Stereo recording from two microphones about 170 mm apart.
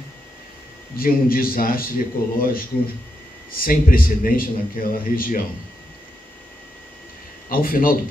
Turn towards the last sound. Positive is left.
turn(degrees=55)  # may be behind; listen again after turning